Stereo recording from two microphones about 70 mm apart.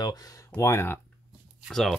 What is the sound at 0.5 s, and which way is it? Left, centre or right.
Speech, left.